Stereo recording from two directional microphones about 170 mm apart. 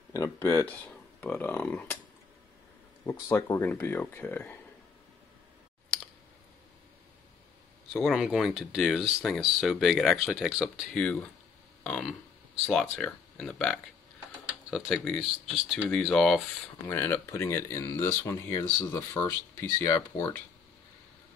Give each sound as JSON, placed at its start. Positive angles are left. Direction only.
{"t": 0.1, "sound": "speech", "side_deg": 15}
{"t": 3.1, "sound": "speech", "side_deg": 15}
{"t": 7.9, "sound": "speech", "side_deg": 0}
{"t": 11.8, "sound": "a sound", "side_deg": 5}
{"t": 12.6, "sound": "speech", "side_deg": 10}
{"t": 16.8, "sound": "speech", "side_deg": 10}